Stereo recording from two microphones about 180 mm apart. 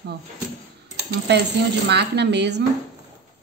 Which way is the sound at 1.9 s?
70° right (ahead or behind).